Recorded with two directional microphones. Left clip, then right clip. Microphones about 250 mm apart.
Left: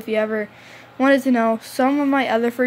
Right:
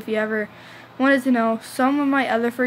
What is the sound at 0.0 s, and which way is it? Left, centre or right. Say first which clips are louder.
A woman's voice: left 2 dB; centre.